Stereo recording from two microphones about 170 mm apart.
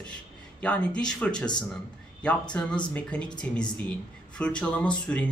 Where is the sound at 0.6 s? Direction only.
5° left (ahead or behind).